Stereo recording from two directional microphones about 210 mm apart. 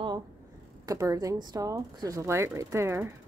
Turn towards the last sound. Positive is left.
turn(degrees=-10)  # may be behind; listen again after turning